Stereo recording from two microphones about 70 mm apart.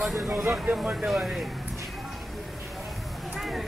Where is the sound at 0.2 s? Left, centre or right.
Right.